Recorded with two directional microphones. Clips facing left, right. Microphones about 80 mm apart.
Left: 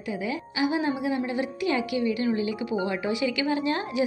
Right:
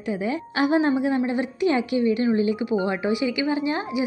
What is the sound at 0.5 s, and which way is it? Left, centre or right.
Speech, right.